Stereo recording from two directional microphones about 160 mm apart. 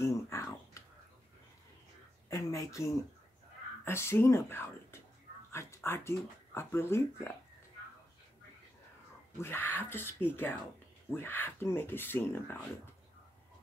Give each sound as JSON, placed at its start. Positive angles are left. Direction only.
{"t": 0.0, "sound": "a sound", "side_deg": 15}
{"t": 2.2, "sound": "speech", "side_deg": 20}
{"t": 9.4, "sound": "speech", "side_deg": 15}